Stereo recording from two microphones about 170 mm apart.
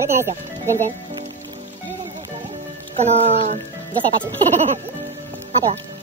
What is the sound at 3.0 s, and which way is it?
Speech, 40° right (ahead or behind).